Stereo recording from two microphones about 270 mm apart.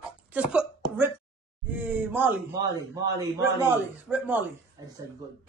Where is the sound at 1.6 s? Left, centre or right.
Centre.